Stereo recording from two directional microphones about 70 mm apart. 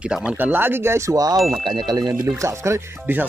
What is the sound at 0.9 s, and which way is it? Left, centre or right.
Wind chime, right.